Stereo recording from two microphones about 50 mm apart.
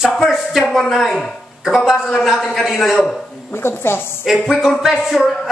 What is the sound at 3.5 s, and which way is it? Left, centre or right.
Speech, left.